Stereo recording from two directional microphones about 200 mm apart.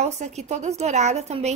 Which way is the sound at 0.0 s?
35° right (ahead or behind).